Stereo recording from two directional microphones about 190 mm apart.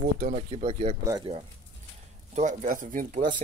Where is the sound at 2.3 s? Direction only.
40° right (ahead or behind).